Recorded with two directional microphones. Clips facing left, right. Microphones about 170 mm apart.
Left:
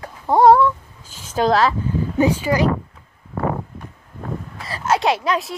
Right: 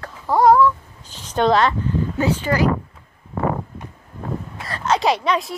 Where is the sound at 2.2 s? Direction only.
15° left (ahead or behind).